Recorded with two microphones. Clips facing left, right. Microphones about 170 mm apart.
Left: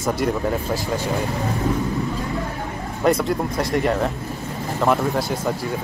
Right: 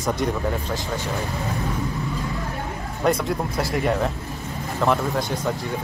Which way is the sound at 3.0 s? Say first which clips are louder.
Left 3 dB; centre (ahead or behind).